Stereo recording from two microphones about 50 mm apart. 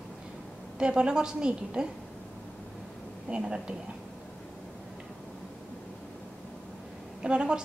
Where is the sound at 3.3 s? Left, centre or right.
Centre.